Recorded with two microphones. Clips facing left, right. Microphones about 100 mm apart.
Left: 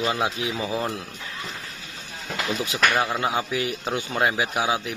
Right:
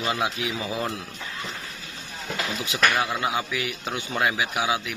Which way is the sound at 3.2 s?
35° left (ahead or behind).